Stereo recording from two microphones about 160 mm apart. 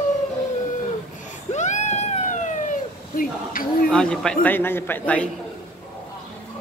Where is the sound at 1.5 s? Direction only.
50° left (ahead or behind).